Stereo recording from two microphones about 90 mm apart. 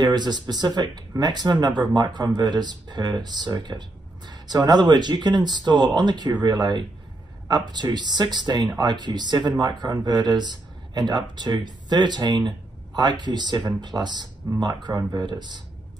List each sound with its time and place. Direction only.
0.0 s speech: 50° right (ahead or behind)